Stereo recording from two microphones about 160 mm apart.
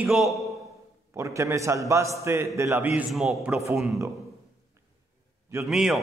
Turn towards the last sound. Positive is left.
turn(degrees=0)  # may be behind; listen again after turning